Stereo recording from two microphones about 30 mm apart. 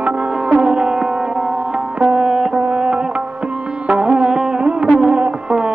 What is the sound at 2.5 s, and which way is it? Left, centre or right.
Music, right.